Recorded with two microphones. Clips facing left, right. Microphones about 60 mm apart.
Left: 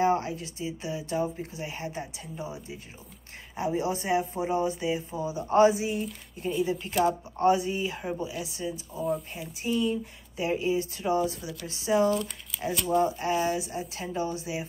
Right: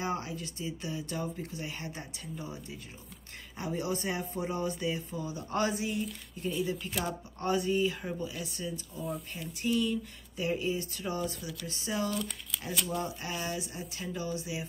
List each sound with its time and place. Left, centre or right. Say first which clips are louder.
0.0 s a sound: left 9 dB; left
0.6 s speech: left 2 dB; centre
7.4 s speech: left 4 dB; left
8.9 s speech: left 10 dB; centre
9.3 s speech: left 1 dB; centre
12.1 s speech: left 7 dB; centre
12.9 s speech: left 10 dB; left